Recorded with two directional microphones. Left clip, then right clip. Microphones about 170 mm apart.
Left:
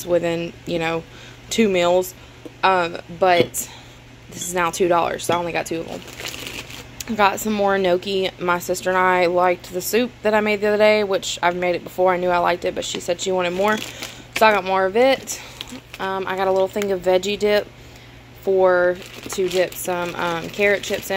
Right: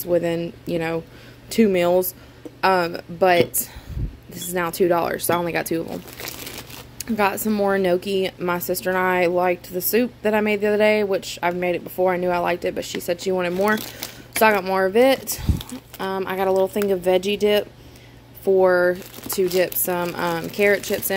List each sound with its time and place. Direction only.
0.0 s a woman's voice: 25° right (ahead or behind)
4.6 s speech: 25° right (ahead or behind); by 5.9 s 50° right (ahead or behind)
7.0 s a woman's voice: 30° right (ahead or behind)
18.6 s speech: 35° right (ahead or behind)